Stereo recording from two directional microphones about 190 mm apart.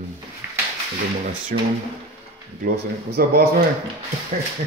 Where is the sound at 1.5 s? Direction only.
45° right (ahead or behind).